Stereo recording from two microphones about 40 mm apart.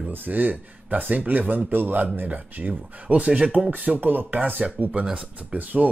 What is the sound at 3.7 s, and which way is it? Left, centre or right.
Speech, right.